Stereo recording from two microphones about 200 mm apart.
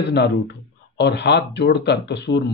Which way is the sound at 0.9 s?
60° left (ahead or behind).